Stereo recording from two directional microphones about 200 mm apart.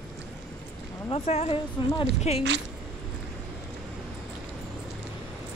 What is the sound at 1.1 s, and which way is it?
A woman's voice, 30° left (ahead or behind).